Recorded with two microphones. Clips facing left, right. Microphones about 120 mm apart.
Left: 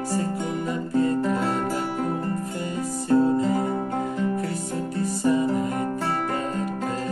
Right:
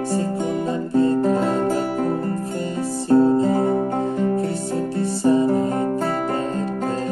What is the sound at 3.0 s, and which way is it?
Music, 30° right (ahead or behind).